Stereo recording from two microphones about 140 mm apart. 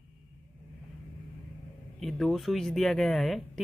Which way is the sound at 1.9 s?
Centre (ahead or behind).